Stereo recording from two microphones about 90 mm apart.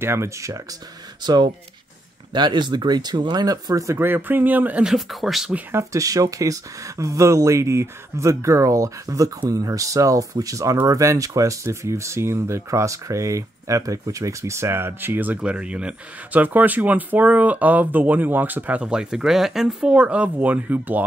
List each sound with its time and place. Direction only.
0.0 s speech: 30° right (ahead or behind)
1.2 s speech: 50° right (ahead or behind); by 4.8 s 20° right (ahead or behind)
4.8 s speech: 5° right (ahead or behind)
5.7 s speech: 35° right (ahead or behind); by 21.0 s 20° right (ahead or behind)